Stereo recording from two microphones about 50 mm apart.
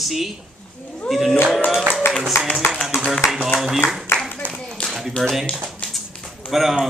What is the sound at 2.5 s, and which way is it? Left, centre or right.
Speech, centre.